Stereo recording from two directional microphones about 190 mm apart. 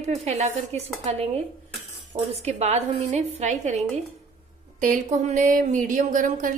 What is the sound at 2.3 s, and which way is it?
A woman's voice, 35° right (ahead or behind).